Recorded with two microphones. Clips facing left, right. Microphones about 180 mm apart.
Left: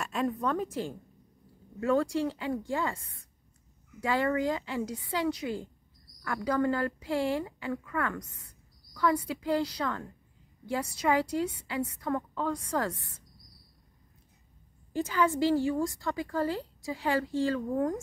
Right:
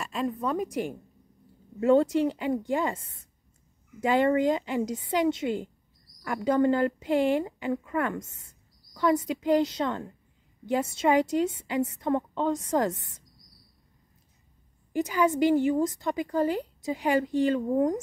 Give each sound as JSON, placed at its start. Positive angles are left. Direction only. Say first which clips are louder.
{"t": 0.0, "sound": "a woman's voice", "louder": "right 1 dB", "side_deg": 0}
{"t": 14.9, "sound": "a woman's voice", "louder": "right 3 dB", "side_deg": -15}